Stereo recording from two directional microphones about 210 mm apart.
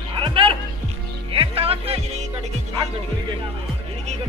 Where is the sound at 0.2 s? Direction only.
25° right (ahead or behind).